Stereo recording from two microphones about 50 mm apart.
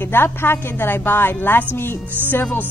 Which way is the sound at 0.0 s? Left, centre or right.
Left.